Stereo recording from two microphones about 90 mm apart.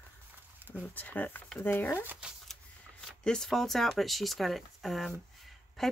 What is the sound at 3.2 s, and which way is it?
Speech, 5° left (ahead or behind).